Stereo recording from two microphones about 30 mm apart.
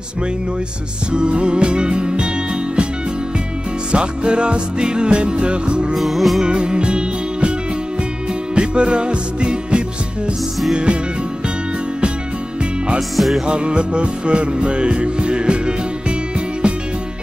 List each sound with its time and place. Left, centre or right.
1.1 s music: right
3.9 s music: right
5.9 s music: centre
6.4 s music: right
8.5 s music: right
13.1 s music: centre
13.5 s music: right